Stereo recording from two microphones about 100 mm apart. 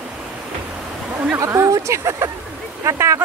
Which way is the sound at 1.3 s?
30° right (ahead or behind).